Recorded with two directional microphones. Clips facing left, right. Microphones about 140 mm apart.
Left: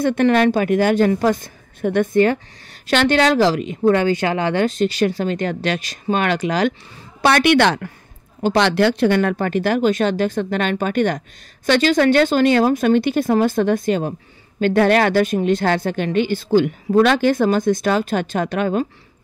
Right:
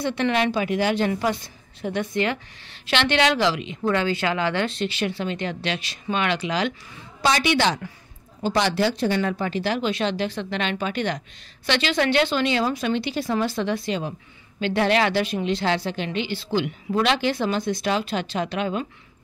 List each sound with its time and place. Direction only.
0.0 s speech: 50° left (ahead or behind)
4.3 s speech: 20° left (ahead or behind)
4.6 s speech: 40° left (ahead or behind)
7.2 s a woman's voice: 60° left (ahead or behind)